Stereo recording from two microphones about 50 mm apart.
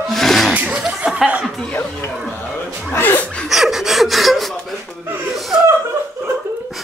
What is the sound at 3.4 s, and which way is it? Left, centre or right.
Gasp, centre.